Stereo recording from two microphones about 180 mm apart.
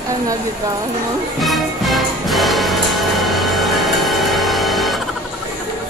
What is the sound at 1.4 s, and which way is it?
Music, centre (ahead or behind).